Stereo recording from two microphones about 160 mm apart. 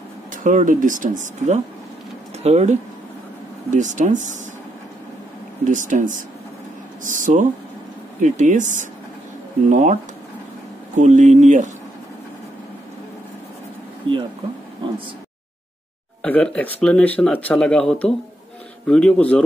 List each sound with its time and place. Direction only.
0.3 s speech: 55° right (ahead or behind)
5.7 s speech: 55° right (ahead or behind)
11.0 s speech: 50° right (ahead or behind)
14.0 s a sound: 35° right (ahead or behind)
16.2 s speech: 10° left (ahead or behind)